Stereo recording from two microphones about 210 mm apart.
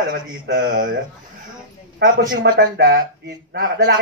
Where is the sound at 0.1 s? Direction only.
45° right (ahead or behind).